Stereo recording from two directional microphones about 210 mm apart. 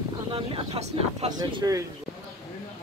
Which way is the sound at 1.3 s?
20° right (ahead or behind).